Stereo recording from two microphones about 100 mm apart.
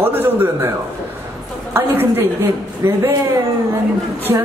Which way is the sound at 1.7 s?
20° right (ahead or behind).